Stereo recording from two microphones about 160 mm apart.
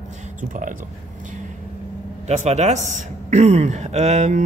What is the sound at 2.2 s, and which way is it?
Speech, 45° right (ahead or behind).